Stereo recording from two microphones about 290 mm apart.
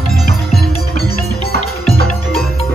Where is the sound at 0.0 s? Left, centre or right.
Centre.